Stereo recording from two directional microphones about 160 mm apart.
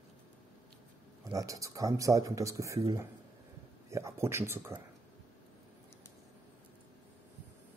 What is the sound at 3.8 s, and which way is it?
Speech, 20° right (ahead or behind).